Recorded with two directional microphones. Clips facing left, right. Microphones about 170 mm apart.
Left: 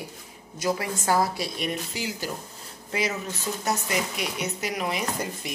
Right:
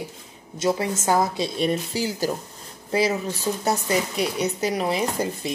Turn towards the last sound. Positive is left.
turn(degrees=-30)  # may be behind; listen again after turning